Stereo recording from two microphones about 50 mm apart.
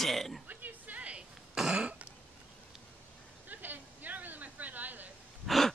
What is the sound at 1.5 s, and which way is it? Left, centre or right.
Cough, centre.